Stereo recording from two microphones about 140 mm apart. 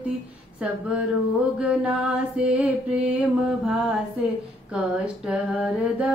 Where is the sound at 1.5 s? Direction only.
10° right (ahead or behind).